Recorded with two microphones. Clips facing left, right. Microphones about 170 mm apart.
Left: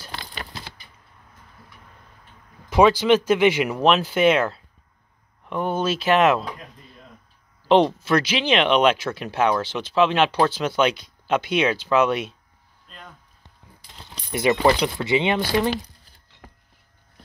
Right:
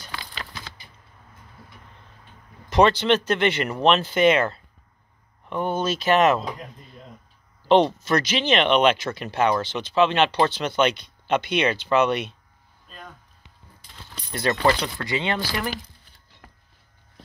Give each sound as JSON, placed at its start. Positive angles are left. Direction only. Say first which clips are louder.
{"t": 2.7, "sound": "speech", "louder": "left 2 dB", "side_deg": 10}
{"t": 7.6, "sound": "speech", "louder": "left 1 dB", "side_deg": 0}
{"t": 12.8, "sound": "a sound", "louder": "right 2 dB", "side_deg": -10}
{"t": 14.3, "sound": "speech", "louder": "left 3 dB", "side_deg": 15}